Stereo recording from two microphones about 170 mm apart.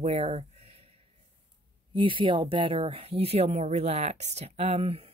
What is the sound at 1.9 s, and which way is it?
Speech, 30° right (ahead or behind).